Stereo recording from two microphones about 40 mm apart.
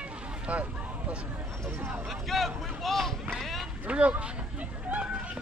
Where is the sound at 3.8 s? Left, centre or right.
Right.